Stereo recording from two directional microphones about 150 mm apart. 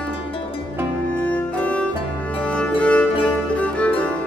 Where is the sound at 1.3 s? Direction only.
10° left (ahead or behind).